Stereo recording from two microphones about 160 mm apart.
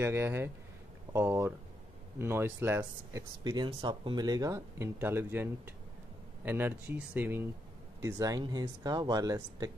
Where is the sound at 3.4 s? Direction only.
25° right (ahead or behind).